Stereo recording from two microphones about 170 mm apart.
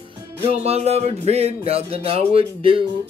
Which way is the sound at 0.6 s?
40° right (ahead or behind).